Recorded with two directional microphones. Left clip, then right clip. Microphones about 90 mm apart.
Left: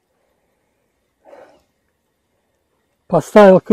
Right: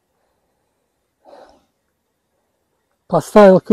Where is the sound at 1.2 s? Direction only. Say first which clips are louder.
Left 1 dB; 15° right (ahead or behind).